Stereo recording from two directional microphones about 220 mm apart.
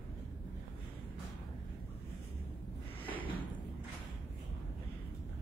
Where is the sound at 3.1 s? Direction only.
10° left (ahead or behind).